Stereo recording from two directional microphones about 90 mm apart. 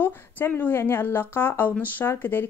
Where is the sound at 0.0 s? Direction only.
20° left (ahead or behind).